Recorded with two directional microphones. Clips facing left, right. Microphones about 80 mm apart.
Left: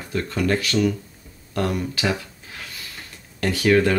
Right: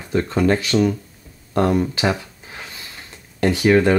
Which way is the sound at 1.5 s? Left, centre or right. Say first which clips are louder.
Right 6 dB; right.